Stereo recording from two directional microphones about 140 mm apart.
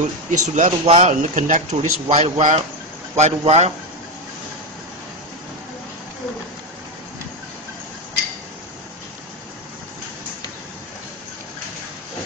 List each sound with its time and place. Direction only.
0.3 s speech: 55° right (ahead or behind)